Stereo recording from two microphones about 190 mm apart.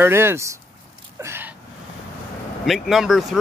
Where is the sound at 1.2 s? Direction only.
10° right (ahead or behind).